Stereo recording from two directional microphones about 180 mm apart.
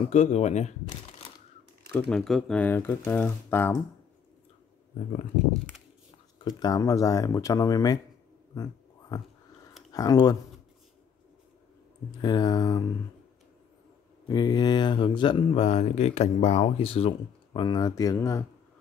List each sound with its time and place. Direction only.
0.0 s speech: 35° left (ahead or behind)
2.0 s speech: 5° left (ahead or behind)
6.6 s speech: 20° left (ahead or behind)
9.9 s speech: 20° left (ahead or behind)
12.2 s speech: 25° left (ahead or behind)
14.2 s speech: 25° left (ahead or behind)